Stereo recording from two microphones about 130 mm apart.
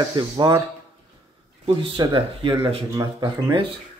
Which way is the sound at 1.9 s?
40° right (ahead or behind).